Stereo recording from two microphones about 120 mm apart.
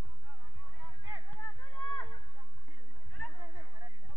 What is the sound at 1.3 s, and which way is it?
Run, 15° left (ahead or behind).